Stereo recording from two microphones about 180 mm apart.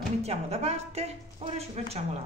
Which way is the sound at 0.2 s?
35° right (ahead or behind).